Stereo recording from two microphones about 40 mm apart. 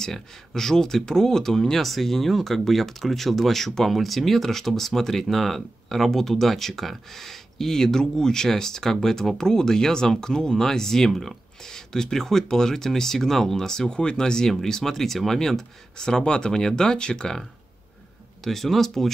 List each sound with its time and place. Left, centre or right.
0.0 s speech: centre
16.1 s speech: left
18.4 s speech: centre